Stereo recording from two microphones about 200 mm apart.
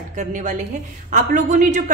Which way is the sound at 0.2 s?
40° right (ahead or behind).